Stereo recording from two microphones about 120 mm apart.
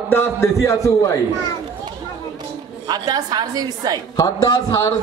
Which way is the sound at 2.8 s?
35° right (ahead or behind).